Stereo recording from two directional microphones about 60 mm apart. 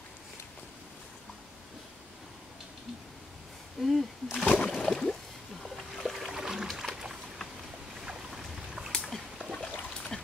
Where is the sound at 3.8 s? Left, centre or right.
Centre.